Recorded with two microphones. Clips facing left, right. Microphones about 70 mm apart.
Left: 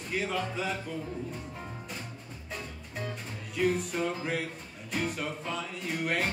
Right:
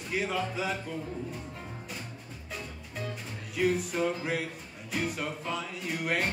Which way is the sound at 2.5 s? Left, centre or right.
Centre.